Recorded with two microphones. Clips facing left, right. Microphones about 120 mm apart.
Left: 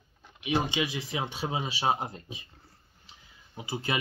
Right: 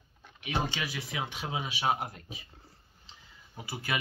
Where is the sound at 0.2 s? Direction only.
15° left (ahead or behind).